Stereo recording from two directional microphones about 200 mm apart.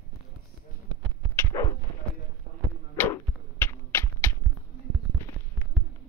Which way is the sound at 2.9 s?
10° left (ahead or behind).